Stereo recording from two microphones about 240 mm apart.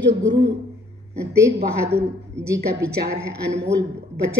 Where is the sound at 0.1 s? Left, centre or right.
Right.